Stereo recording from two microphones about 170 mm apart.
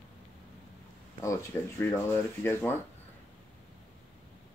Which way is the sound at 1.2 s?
20° left (ahead or behind).